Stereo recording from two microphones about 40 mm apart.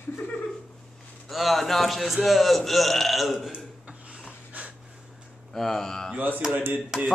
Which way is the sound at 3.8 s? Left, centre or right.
Right.